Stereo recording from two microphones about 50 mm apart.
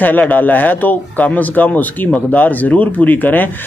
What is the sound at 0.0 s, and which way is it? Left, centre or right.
A man's voice, left.